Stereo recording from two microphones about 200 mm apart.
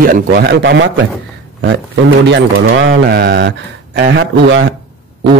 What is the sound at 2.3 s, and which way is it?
Speech, 65° right (ahead or behind).